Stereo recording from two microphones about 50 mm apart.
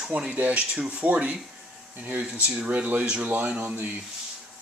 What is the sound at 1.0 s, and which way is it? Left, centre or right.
Speech, right.